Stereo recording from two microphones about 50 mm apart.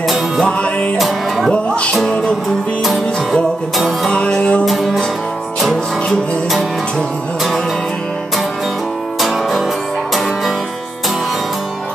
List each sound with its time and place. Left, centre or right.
0.5 s music: left
0.9 s music: centre
1.5 s music: left
2.8 s music: centre
4.1 s music: left
4.6 s music: centre